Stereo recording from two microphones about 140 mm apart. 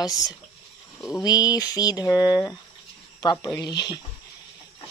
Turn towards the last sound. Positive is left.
turn(degrees=30)  # may be behind; listen again after turning